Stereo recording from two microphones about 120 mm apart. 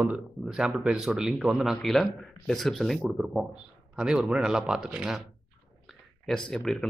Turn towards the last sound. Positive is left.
turn(degrees=0)  # may be behind; listen again after turning